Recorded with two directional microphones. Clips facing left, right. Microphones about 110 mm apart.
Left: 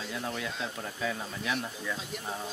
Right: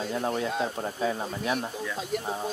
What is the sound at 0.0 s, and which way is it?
Speech, 40° right (ahead or behind).